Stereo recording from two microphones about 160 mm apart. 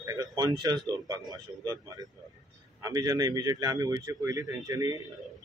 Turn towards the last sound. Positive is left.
turn(degrees=-20)  # may be behind; listen again after turning